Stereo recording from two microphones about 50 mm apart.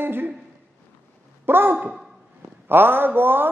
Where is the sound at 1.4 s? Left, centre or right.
Right.